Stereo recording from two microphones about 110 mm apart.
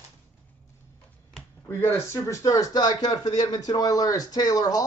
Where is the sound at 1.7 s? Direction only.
20° left (ahead or behind).